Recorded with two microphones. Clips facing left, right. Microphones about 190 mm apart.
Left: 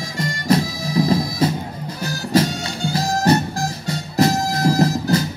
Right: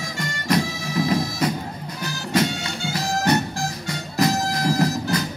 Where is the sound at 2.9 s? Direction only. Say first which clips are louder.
Left 4 dB; 35° left (ahead or behind).